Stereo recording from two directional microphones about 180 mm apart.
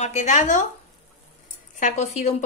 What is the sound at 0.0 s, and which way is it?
Speech, 40° left (ahead or behind).